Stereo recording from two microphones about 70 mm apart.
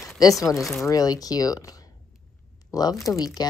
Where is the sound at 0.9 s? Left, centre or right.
Left.